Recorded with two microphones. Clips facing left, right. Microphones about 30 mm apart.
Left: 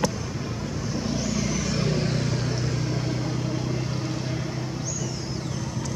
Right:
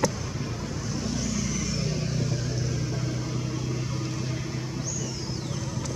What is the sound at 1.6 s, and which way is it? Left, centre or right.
Vehicle, left.